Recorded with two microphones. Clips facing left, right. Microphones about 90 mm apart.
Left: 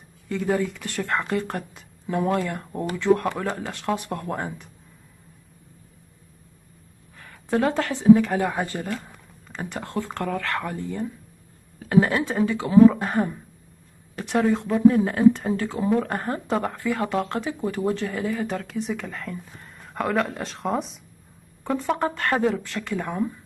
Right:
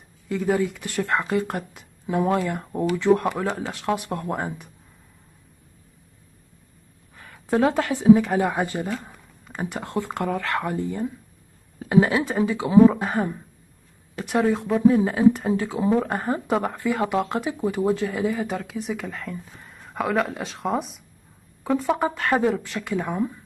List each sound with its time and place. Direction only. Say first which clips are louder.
0.3 s speech: right 1 dB; 5° right (ahead or behind)
7.2 s a woman's voice: right 2 dB; 10° right (ahead or behind)
12.0 s speech: right 1 dB; 5° right (ahead or behind)
13.0 s speech: even; centre (ahead or behind)
22.9 s speech: right 2 dB; centre (ahead or behind)